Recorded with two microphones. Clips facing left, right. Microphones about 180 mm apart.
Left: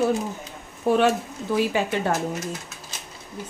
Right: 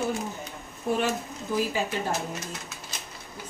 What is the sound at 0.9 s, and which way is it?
Speech, 75° left (ahead or behind).